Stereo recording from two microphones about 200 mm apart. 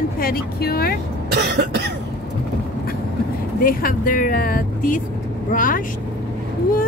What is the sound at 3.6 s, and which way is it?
Speech, 45° left (ahead or behind).